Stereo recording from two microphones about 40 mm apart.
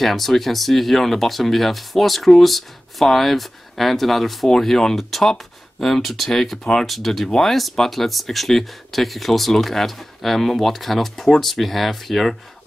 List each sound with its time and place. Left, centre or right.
0.0 s speech: centre
6.9 s speech: centre